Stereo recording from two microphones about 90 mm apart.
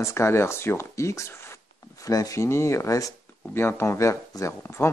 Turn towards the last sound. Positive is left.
turn(degrees=30)  # may be behind; listen again after turning